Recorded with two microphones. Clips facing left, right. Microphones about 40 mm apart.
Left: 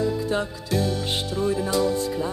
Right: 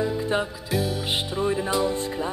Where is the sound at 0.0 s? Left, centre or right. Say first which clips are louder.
Even; right.